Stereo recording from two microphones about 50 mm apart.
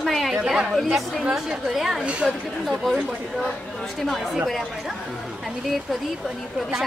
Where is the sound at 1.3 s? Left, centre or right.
Centre.